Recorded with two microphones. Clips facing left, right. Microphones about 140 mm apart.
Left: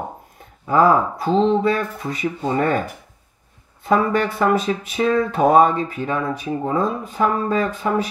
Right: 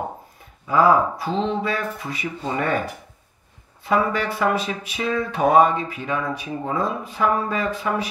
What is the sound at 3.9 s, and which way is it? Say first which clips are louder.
Speech: left 3 dB; 45° left (ahead or behind).